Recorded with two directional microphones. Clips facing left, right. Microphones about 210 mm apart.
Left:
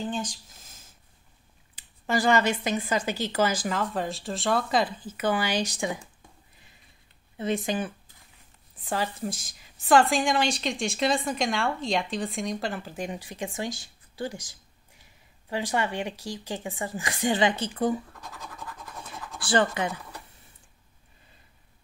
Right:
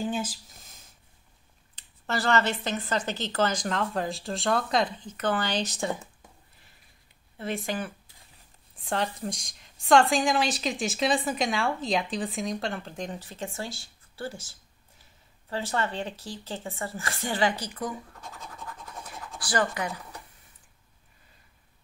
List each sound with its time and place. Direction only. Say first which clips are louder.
0.0 s a sound: right 1 dB; 10° right (ahead or behind)
1.8 s speech: left 4 dB; 15° left (ahead or behind)
7.3 s speech: left 4 dB; 20° left (ahead or behind)
8.7 s a woman's voice: even; centre (ahead or behind); by 17.9 s 25° left (ahead or behind)
19.0 s scratch: left 6 dB; 25° left (ahead or behind)